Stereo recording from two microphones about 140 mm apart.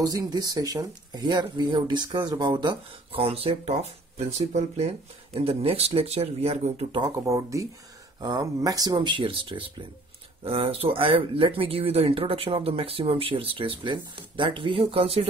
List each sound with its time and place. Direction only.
0.0 s speech: 25° right (ahead or behind); by 7.0 s 50° right (ahead or behind)
7.1 s speech: 20° right (ahead or behind); by 15.2 s 45° right (ahead or behind)